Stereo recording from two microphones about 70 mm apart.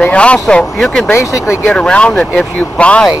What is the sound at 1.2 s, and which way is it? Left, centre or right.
Speech, left.